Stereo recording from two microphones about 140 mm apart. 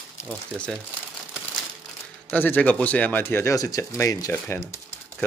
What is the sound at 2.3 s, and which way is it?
Speech, 10° left (ahead or behind).